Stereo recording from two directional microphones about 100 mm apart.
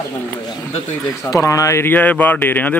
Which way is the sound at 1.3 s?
35° left (ahead or behind).